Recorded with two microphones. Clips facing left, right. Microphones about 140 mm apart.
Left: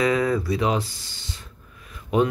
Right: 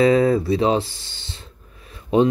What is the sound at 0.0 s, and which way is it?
Speech, 30° right (ahead or behind).